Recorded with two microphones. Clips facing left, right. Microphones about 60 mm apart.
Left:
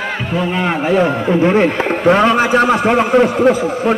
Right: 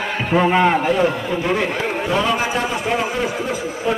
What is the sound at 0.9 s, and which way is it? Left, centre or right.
A man's voice, left.